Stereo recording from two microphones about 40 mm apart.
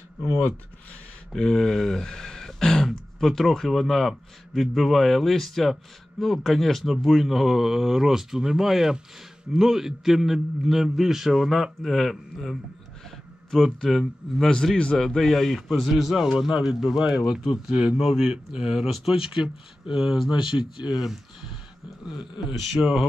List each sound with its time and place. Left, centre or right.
1.3 s a man's voice: centre
13.1 s a sound: centre
13.8 s a man's voice: centre
14.5 s a man's voice: centre
21.0 s speech: centre
22.8 s speech: centre